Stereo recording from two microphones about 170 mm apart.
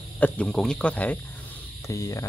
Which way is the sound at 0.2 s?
5° left (ahead or behind).